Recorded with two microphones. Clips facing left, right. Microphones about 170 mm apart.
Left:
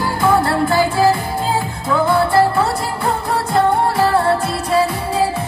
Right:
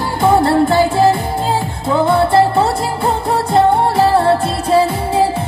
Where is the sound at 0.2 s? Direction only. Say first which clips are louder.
Right 4 dB; 25° right (ahead or behind).